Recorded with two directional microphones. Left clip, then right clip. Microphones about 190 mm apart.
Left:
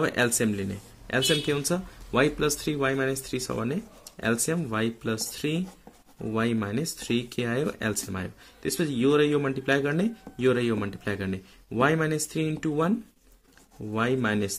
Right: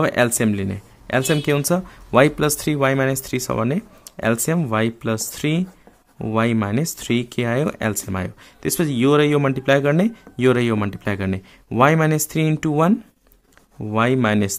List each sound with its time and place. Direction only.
0.0 s speech: 35° right (ahead or behind)
13.9 s speech: 35° right (ahead or behind)